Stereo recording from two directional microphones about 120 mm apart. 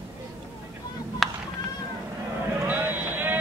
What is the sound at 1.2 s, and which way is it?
Goat, centre (ahead or behind).